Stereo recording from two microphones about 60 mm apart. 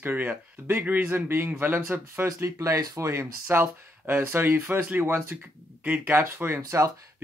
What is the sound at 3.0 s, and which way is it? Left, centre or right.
Speech, right.